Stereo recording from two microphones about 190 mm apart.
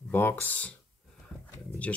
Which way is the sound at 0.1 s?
10° left (ahead or behind).